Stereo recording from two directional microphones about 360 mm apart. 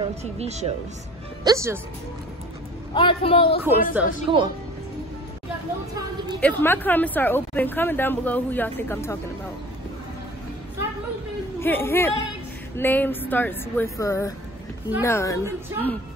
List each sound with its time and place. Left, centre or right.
0.2 s speech: centre
2.9 s speech: centre
3.6 s speech: centre
6.4 s speech: centre
11.6 s speech: centre